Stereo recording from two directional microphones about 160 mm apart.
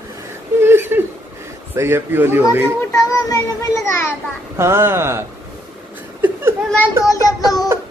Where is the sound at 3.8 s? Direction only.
15° left (ahead or behind).